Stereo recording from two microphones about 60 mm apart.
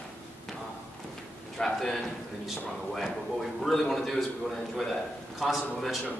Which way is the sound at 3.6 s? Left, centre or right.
Centre.